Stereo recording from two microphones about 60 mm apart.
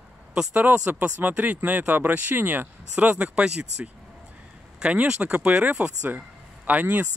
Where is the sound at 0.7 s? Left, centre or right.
Centre.